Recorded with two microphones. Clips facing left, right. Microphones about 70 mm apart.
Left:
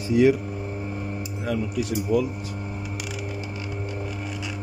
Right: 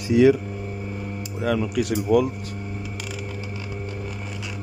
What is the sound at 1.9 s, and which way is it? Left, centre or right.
Speech, right.